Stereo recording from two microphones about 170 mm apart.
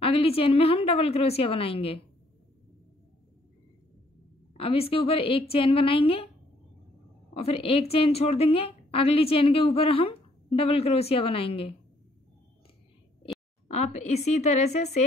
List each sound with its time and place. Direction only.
0.0 s a woman's voice: 35° left (ahead or behind)
4.6 s a woman's voice: 35° left (ahead or behind)
7.3 s a woman's voice: 35° left (ahead or behind)
13.7 s a woman's voice: 40° left (ahead or behind)